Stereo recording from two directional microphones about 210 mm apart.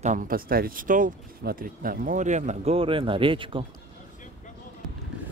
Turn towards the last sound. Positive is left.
turn(degrees=-25)  # may be behind; listen again after turning